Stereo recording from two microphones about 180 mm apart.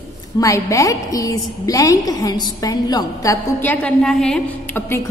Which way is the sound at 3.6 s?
10° left (ahead or behind).